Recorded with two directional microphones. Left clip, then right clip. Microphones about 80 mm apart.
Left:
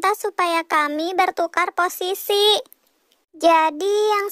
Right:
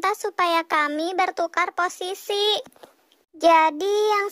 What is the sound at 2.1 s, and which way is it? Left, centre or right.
Speech, left.